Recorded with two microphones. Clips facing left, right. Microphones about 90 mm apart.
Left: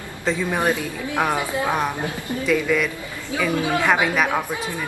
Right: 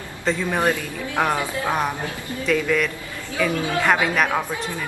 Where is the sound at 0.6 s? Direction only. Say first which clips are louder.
Even; 15° left (ahead or behind).